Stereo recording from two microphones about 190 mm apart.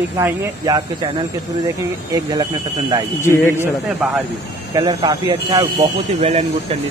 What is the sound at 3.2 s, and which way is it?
Speech, 15° left (ahead or behind).